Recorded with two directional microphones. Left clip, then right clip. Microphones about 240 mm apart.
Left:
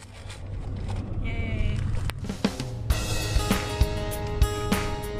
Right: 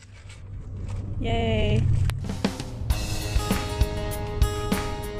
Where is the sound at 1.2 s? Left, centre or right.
Right.